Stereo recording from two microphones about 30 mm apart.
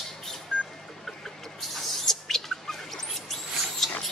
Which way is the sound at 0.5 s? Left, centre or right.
Left.